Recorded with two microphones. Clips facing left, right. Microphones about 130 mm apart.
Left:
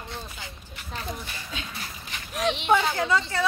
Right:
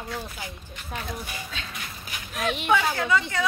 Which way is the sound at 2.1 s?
5° right (ahead or behind).